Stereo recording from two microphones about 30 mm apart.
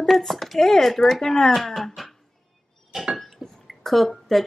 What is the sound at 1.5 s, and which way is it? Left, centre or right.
Speech, centre.